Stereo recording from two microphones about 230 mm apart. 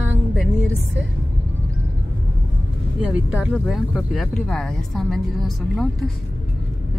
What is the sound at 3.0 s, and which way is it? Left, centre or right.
Speech, centre.